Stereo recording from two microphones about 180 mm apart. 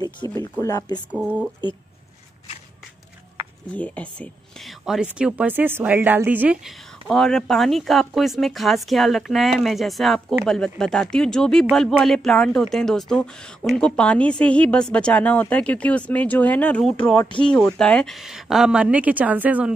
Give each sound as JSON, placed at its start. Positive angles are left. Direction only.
{"t": 0.4, "sound": "speech", "side_deg": 20}
{"t": 1.1, "sound": "speech", "side_deg": -10}
{"t": 3.7, "sound": "speech", "side_deg": 10}